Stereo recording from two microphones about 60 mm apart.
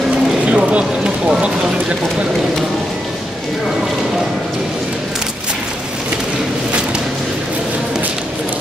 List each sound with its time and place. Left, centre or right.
0.5 s speech: centre